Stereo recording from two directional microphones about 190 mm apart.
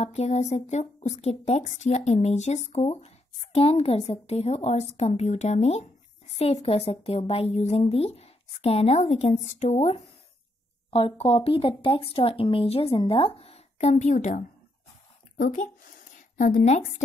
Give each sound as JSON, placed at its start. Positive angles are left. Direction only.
{"t": 0.0, "sound": "a woman's voice", "side_deg": 35}